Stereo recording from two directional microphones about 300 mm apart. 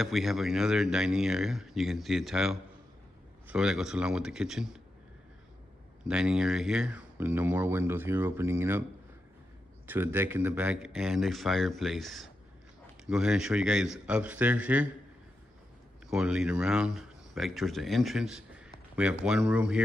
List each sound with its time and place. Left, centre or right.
0.0 s speech: centre
6.0 s speech: centre
9.8 s speech: centre
16.1 s speech: centre